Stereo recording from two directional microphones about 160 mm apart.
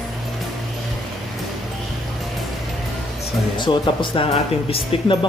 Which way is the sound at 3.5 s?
30° left (ahead or behind).